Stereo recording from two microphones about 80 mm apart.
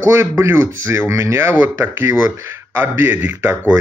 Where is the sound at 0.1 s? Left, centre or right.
Right.